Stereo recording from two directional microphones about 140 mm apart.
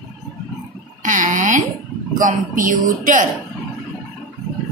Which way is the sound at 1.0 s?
65° right (ahead or behind).